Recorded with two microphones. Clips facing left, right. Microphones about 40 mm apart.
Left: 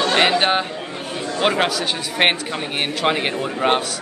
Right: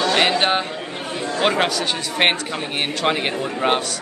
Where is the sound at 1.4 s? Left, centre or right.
Centre.